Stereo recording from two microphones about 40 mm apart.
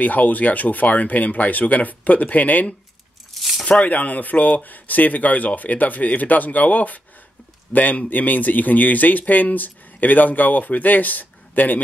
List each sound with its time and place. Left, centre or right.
0.0 s speech: left
3.3 s a sound: centre
3.6 s speech: left